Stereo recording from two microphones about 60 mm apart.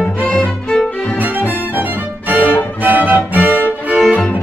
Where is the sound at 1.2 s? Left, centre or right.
Right.